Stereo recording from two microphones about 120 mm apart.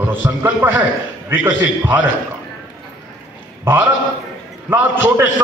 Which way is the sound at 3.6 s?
20° right (ahead or behind).